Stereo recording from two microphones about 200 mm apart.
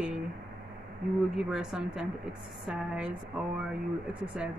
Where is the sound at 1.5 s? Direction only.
5° right (ahead or behind).